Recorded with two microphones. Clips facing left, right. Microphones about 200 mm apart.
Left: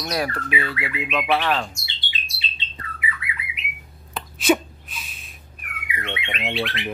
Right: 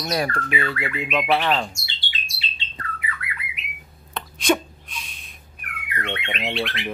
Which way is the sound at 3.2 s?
55° right (ahead or behind).